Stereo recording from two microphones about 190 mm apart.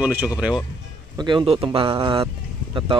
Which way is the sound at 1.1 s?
25° right (ahead or behind).